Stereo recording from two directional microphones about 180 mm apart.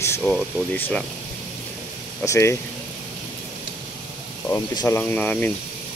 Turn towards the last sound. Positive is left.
turn(degrees=10)  # may be behind; listen again after turning